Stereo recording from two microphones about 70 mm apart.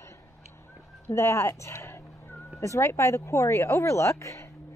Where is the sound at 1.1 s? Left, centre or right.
Left.